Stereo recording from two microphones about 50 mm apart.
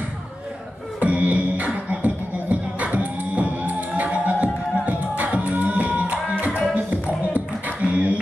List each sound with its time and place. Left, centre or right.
0.9 s beatboxing: right
4.8 s music: right